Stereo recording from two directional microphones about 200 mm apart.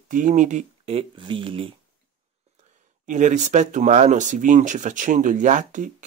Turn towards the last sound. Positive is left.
turn(degrees=-40)  # may be behind; listen again after turning